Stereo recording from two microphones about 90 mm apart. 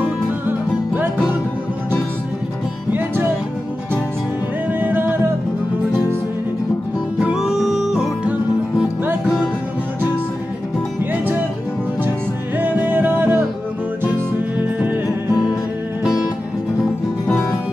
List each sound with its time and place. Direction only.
2.9 s music: 20° right (ahead or behind)
4.7 s music: 20° right (ahead or behind)
7.2 s music: 5° right (ahead or behind)
12.5 s music: 20° right (ahead or behind)
14.8 s music: 20° right (ahead or behind)